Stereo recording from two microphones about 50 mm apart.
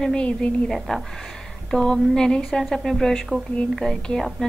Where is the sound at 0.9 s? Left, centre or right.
Centre.